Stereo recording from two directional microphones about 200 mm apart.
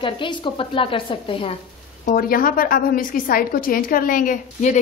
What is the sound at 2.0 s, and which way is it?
A woman's voice, 45° left (ahead or behind).